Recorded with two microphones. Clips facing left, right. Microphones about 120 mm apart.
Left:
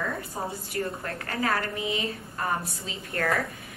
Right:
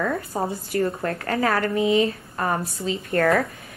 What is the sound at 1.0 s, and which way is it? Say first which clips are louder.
A woman's voice: right 6 dB; 60° right (ahead or behind).